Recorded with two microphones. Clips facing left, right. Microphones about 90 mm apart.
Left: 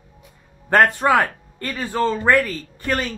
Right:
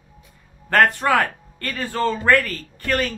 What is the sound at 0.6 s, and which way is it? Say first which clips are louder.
Speech: left 2 dB; 15° left (ahead or behind).